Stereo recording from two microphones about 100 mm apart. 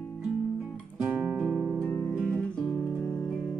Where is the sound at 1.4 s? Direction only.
15° right (ahead or behind).